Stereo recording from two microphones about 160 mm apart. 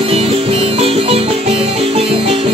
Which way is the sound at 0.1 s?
35° right (ahead or behind).